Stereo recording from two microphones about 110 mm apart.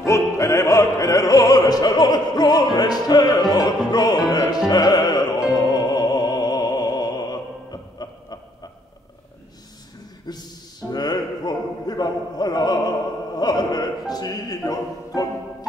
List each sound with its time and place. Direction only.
0.0 s opera: 25° left (ahead or behind)
4.3 s music: 40° left (ahead or behind)
10.3 s a sound: 35° left (ahead or behind)
13.4 s opera: 35° left (ahead or behind)